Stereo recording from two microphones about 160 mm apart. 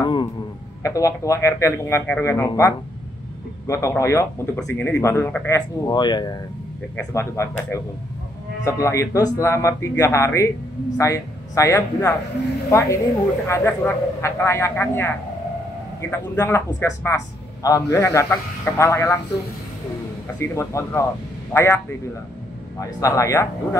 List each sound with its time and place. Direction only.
0.0 s a man's voice: 30° left (ahead or behind)
5.9 s a man's voice: 25° left (ahead or behind)
7.1 s a man's voice: 15° left (ahead or behind)
20.3 s a man's voice: 15° left (ahead or behind)